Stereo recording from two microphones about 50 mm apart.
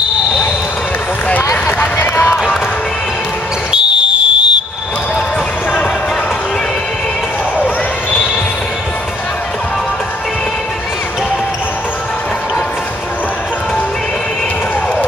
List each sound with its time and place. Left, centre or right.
3.7 s fire alarm: right